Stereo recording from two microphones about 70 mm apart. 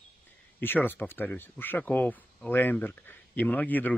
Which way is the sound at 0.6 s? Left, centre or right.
Left.